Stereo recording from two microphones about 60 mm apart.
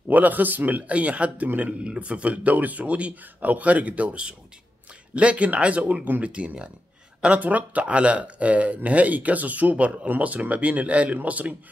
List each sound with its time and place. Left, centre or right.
0.1 s speech: right